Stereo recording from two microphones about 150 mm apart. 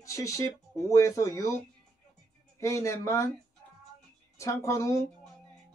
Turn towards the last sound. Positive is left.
turn(degrees=20)  # may be behind; listen again after turning